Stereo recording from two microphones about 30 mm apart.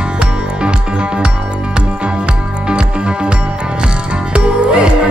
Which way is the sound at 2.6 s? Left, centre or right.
Right.